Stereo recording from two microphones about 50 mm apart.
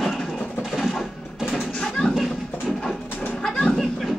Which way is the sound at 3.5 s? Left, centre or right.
Left.